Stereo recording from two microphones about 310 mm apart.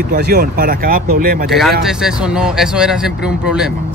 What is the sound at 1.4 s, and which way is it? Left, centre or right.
Speech, centre.